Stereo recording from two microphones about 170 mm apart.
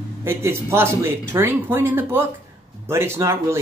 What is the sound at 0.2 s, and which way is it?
Speech, 15° right (ahead or behind).